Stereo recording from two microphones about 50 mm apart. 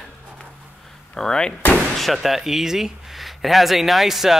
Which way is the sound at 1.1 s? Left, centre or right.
Centre.